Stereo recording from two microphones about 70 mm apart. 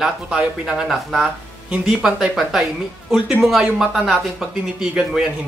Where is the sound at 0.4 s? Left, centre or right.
Centre.